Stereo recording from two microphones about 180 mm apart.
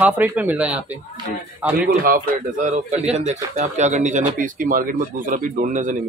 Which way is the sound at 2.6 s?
40° right (ahead or behind).